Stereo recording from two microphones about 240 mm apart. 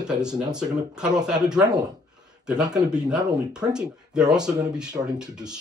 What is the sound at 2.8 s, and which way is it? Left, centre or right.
Speech, centre.